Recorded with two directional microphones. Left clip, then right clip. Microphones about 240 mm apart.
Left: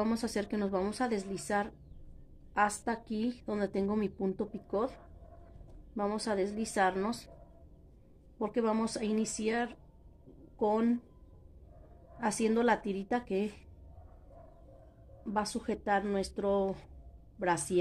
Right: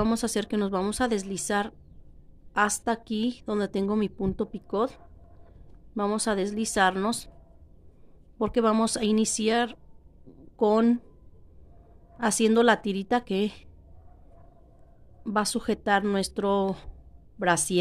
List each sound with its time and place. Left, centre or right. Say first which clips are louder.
0.0 s speech: right 6 dB; right
5.9 s speech: right 6 dB; right
8.4 s speech: right 8 dB; right
12.2 s speech: right 8 dB; right
15.2 s speech: right 7 dB; right